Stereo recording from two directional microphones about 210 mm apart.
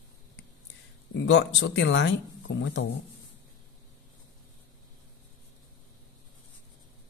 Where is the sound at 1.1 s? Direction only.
60° left (ahead or behind).